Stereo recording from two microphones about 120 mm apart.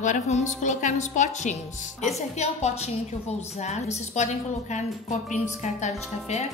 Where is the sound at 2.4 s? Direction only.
65° left (ahead or behind); by 5.3 s 85° left.